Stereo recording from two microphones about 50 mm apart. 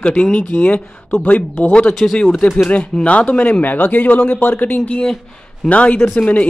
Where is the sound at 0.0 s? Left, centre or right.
Left.